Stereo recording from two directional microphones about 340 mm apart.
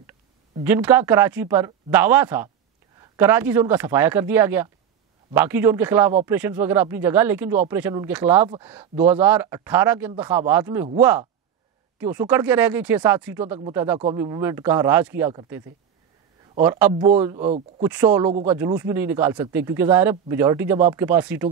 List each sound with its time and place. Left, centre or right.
0.7 s speech: centre
16.6 s speech: centre
16.9 s speech: centre